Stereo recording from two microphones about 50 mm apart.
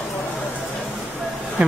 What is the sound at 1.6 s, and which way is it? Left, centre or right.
Speech, right.